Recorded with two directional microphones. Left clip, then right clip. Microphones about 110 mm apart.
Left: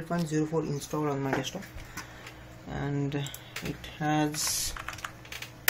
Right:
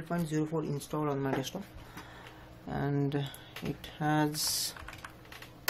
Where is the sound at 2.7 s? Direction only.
25° right (ahead or behind).